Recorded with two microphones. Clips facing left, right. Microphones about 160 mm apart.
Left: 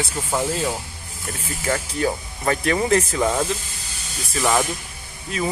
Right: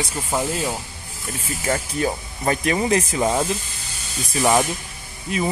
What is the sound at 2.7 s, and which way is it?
Speech, 10° right (ahead or behind).